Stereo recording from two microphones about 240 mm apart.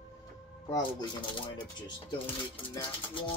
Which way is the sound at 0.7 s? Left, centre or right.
Centre.